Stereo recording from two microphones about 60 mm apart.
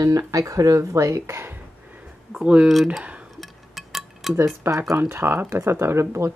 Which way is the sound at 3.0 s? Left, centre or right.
Right.